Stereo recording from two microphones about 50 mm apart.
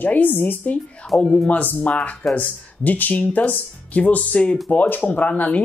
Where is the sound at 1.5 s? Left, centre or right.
Left.